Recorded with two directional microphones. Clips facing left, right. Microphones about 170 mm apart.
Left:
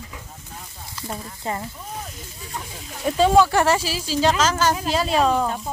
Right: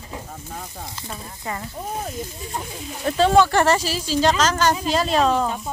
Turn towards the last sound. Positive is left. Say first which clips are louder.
# even
turn(degrees=0)  # may be behind; listen again after turning